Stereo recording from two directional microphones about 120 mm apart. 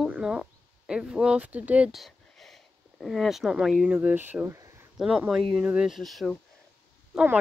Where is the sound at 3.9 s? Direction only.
15° right (ahead or behind).